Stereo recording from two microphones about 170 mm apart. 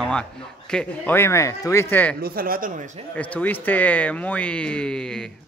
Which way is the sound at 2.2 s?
60° right (ahead or behind).